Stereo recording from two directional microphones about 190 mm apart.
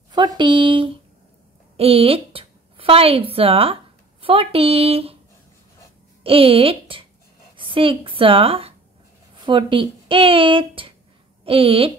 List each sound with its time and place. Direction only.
0.1 s speech: 25° right (ahead or behind)
6.2 s a woman's voice: 30° right (ahead or behind)